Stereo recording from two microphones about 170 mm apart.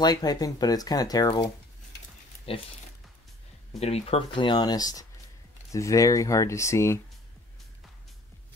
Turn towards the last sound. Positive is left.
turn(degrees=15)  # may be behind; listen again after turning